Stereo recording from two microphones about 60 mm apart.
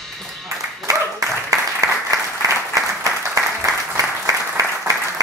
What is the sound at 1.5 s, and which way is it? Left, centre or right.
Applause, right.